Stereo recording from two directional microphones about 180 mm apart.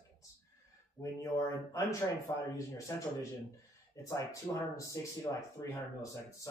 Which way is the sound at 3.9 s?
15° left (ahead or behind).